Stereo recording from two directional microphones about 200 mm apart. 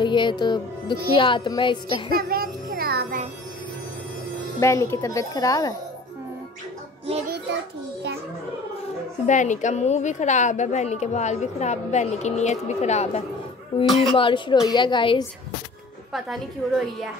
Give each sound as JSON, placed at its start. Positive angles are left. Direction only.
{"t": 0.0, "sound": "music", "side_deg": 25}
{"t": 1.1, "sound": "a woman's voice", "side_deg": 25}
{"t": 2.1, "sound": "child singing", "side_deg": -45}
{"t": 4.6, "sound": "speech", "side_deg": 15}
{"t": 9.2, "sound": "a woman's voice", "side_deg": 40}
{"t": 13.8, "sound": "a woman's voice", "side_deg": 0}
{"t": 14.1, "sound": "a woman's voice", "side_deg": 25}
{"t": 16.1, "sound": "a woman's voice", "side_deg": 0}